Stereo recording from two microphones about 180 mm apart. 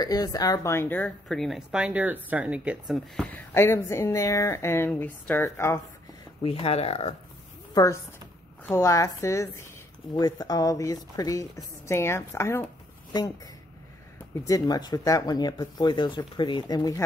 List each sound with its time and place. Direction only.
0.0 s speech: 20° left (ahead or behind); by 3.0 s 5° right (ahead or behind)
3.2 s speech: 10° left (ahead or behind)
6.4 s speech: 30° left (ahead or behind)
7.7 s speech: 20° left (ahead or behind)
14.4 s speech: 20° left (ahead or behind)